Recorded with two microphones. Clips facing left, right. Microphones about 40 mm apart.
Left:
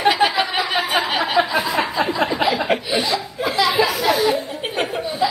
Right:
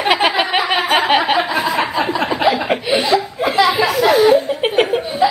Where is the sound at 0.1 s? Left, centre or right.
Right.